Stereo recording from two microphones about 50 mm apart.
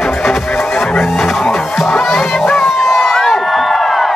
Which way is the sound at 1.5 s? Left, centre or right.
Centre.